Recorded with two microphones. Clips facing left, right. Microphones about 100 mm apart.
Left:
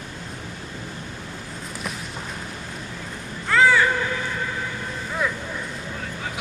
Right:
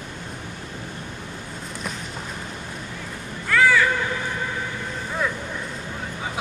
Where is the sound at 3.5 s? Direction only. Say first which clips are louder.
Left 1 dB; 25° left (ahead or behind).